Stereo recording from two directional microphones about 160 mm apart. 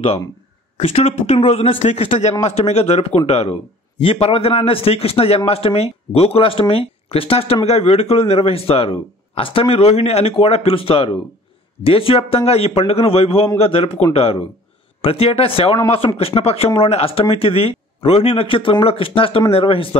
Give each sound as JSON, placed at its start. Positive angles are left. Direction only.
{"t": 0.7, "sound": "a man's voice", "side_deg": 40}